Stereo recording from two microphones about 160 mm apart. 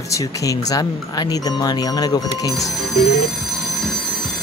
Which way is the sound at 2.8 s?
Centre (ahead or behind).